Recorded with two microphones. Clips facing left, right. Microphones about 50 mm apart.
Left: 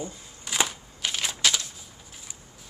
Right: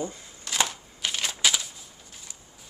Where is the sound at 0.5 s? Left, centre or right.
Centre.